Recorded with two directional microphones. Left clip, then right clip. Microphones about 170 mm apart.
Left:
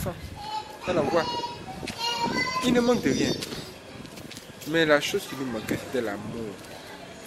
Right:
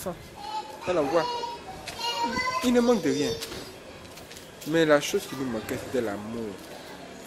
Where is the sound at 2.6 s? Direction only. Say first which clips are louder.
Right 1 dB; 10° right (ahead or behind).